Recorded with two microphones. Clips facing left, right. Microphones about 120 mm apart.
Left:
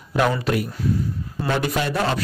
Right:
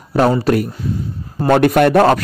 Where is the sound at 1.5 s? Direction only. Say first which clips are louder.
Right 12 dB; 60° right (ahead or behind).